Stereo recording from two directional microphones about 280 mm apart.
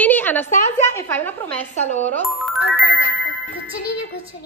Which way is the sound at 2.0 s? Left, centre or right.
Centre.